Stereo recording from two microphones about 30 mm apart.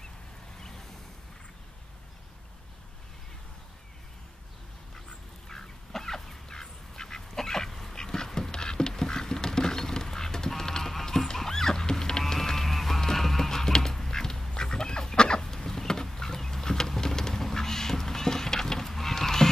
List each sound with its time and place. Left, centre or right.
0.6 s vehicle: centre
5.5 s duck: centre
7.9 s patter: left
11.3 s goose: centre
13.0 s horse: centre
13.9 s duck: centre
15.4 s a sound: centre